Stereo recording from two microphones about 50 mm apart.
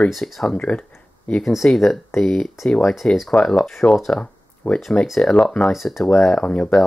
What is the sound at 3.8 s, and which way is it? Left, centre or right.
Speech, left.